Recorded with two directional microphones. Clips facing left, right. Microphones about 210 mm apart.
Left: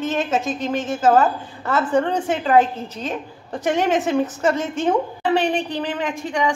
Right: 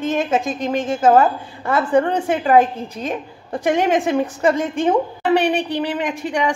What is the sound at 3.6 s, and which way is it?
A woman's voice, 10° right (ahead or behind).